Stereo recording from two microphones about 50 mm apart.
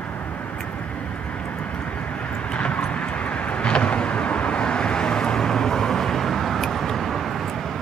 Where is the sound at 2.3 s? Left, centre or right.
Left.